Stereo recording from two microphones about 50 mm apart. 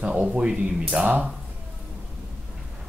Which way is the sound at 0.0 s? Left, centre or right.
Centre.